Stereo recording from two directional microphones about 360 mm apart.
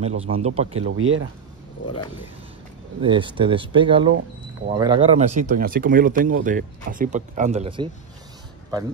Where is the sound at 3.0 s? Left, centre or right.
Centre.